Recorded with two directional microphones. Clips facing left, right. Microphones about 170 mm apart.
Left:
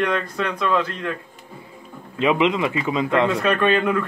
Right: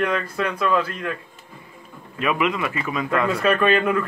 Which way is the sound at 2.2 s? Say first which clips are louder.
Left 4 dB; 25° left (ahead or behind).